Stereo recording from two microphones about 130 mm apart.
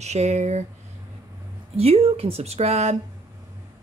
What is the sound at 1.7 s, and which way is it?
Speech, 50° right (ahead or behind).